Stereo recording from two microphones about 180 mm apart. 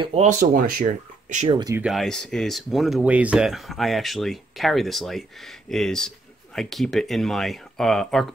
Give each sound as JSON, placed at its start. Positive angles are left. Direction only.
{"t": 0.0, "sound": "speech", "side_deg": -35}
{"t": 1.5, "sound": "speech", "side_deg": -20}
{"t": 1.8, "sound": "speech", "side_deg": 0}